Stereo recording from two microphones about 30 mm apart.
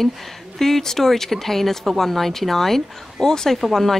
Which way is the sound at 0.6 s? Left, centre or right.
Centre.